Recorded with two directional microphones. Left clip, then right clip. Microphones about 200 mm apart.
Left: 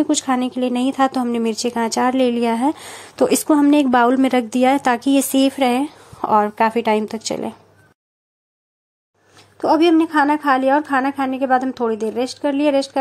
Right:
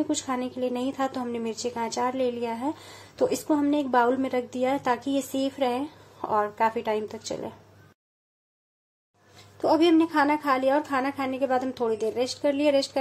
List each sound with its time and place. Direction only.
0.0 s speech: 30° left (ahead or behind)
9.4 s a woman's voice: 25° left (ahead or behind)